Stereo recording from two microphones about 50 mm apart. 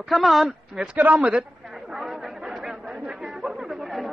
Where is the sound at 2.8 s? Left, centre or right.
Centre.